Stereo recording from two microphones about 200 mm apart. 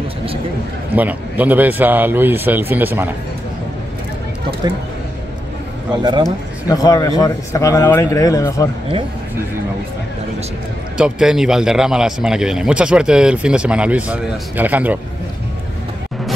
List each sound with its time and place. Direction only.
0.9 s speech: 10° right (ahead or behind)
6.7 s a man's voice: 15° left (ahead or behind)
11.0 s speech: 5° right (ahead or behind)